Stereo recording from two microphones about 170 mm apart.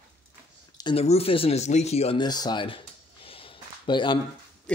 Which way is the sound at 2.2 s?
25° left (ahead or behind).